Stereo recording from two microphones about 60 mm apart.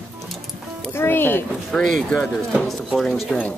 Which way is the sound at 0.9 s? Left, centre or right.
Left.